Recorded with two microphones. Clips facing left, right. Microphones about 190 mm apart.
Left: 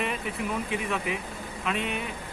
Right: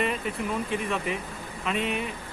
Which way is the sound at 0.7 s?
Centre (ahead or behind).